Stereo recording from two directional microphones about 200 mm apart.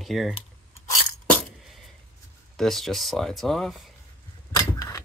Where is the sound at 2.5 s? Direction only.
Centre (ahead or behind).